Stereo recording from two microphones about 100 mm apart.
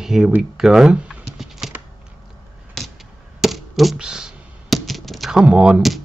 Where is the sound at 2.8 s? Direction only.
5° left (ahead or behind).